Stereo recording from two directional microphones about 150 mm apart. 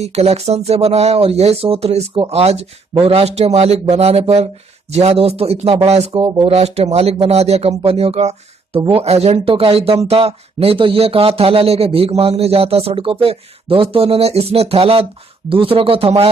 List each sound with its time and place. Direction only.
0.0 s speech: 45° right (ahead or behind)
6.1 s speech: 30° right (ahead or behind)